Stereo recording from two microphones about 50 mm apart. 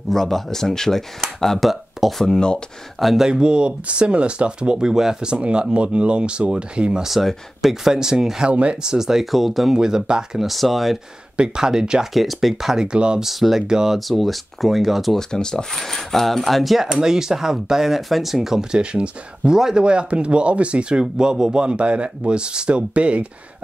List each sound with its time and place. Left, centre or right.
0.1 s speech: centre
3.3 s speech: centre
7.1 s speech: centre
8.5 s speech: right
8.9 s speech: centre
10.5 s speech: centre
11.3 s speech: centre
12.0 s speech: centre
12.8 s speech: centre
13.2 s speech: centre
13.9 s speech: centre
15.1 s speech: centre; by 23.2 s right